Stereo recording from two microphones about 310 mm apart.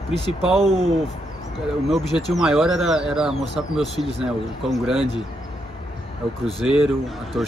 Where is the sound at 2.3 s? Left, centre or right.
Centre.